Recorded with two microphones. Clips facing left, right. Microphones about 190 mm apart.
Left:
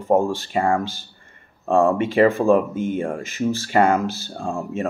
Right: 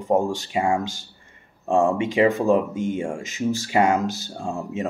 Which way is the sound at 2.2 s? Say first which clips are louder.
Left 2 dB; 20° right (ahead or behind).